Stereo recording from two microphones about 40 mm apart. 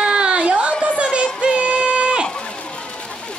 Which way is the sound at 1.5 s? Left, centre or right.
Right.